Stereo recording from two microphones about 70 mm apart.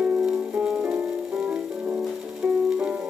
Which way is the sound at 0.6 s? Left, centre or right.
Right.